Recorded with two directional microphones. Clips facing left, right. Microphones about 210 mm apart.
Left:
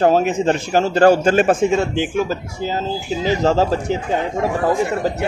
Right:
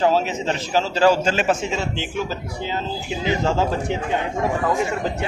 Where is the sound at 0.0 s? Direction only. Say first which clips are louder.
Left 5 dB; 50° left (ahead or behind).